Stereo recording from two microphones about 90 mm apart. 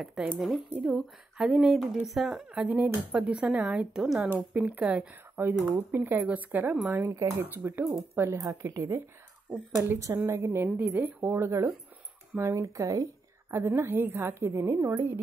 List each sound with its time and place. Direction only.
0.0 s speech: 5° right (ahead or behind)
2.6 s speech: 15° right (ahead or behind)
4.6 s a woman's voice: 15° right (ahead or behind)